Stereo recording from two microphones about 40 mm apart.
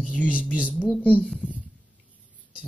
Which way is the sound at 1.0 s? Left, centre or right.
Left.